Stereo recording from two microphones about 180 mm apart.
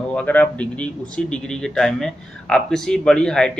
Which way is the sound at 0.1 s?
5° left (ahead or behind).